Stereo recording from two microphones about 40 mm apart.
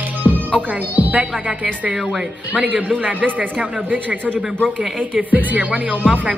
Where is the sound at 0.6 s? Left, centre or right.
Right.